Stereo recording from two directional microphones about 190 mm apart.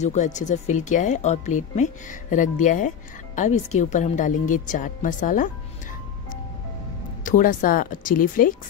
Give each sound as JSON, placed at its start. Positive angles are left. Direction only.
{"t": 0.0, "sound": "speech", "side_deg": 40}
{"t": 7.2, "sound": "speech", "side_deg": 45}